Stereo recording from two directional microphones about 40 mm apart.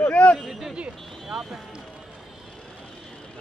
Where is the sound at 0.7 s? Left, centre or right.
Right.